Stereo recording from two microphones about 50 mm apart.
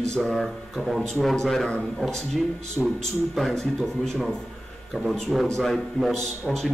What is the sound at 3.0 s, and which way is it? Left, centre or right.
A man's voice, centre.